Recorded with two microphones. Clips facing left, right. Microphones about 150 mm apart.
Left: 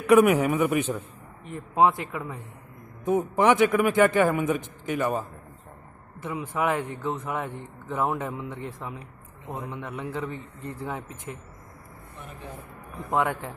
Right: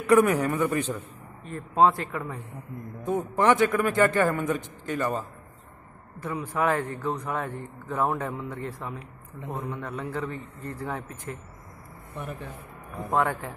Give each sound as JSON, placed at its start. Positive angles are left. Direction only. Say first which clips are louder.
{"t": 0.1, "sound": "a man's voice", "louder": "left 2 dB", "side_deg": 15}
{"t": 13.1, "sound": "a man's voice", "louder": "even", "side_deg": 20}